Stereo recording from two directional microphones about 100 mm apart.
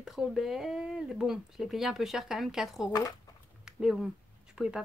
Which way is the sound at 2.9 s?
35° left (ahead or behind).